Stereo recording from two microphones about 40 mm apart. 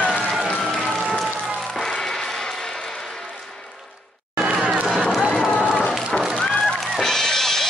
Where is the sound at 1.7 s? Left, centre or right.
Centre.